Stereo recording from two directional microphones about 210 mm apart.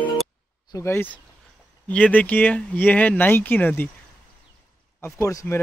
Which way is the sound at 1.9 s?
5° left (ahead or behind).